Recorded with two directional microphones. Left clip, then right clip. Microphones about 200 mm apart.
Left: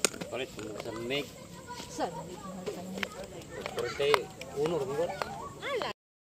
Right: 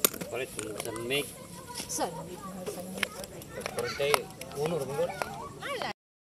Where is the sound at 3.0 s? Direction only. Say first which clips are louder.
Right 4 dB; 40° right (ahead or behind).